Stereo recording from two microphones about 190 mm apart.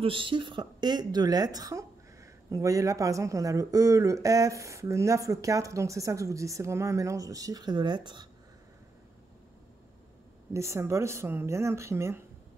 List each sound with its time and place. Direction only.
0.0 s speech: 25° right (ahead or behind)
10.5 s speech: 15° right (ahead or behind)